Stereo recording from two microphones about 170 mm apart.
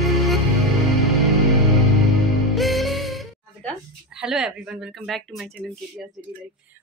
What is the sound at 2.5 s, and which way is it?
Music, centre (ahead or behind).